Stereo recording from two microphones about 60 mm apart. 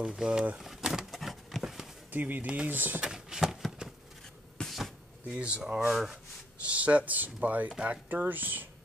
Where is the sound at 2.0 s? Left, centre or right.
Right.